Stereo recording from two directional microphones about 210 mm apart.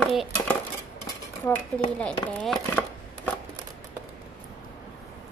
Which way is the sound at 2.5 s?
5° left (ahead or behind).